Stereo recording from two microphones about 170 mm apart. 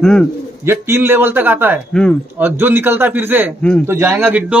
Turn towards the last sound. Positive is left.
turn(degrees=-10)  # may be behind; listen again after turning